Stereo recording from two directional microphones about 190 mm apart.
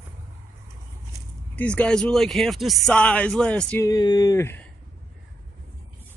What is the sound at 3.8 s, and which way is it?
Speech, 20° left (ahead or behind).